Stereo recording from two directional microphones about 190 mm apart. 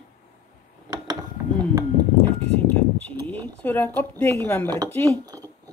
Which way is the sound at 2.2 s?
10° left (ahead or behind).